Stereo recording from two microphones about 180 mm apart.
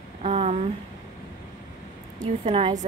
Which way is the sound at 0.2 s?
35° right (ahead or behind).